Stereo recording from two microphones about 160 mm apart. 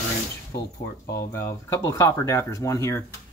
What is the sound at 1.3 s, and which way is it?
Speech, 15° left (ahead or behind).